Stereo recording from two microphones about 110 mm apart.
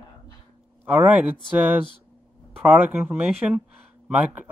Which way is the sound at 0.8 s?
15° right (ahead or behind).